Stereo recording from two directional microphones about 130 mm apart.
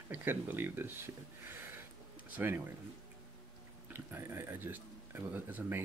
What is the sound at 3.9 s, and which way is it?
Speech, 15° right (ahead or behind).